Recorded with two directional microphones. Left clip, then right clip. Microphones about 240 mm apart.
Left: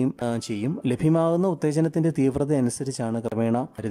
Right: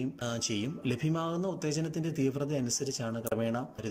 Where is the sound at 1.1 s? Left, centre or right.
Left.